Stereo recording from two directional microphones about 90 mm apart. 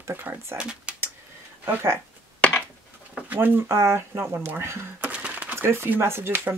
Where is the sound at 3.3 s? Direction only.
20° right (ahead or behind).